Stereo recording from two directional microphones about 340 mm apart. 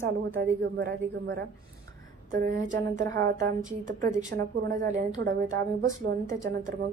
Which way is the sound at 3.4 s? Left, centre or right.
Right.